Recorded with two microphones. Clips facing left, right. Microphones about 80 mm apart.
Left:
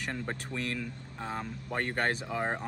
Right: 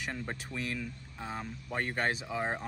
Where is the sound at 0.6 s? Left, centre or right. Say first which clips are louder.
Left 2 dB; centre.